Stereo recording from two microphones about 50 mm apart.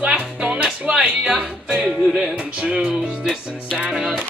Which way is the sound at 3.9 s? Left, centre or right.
Centre.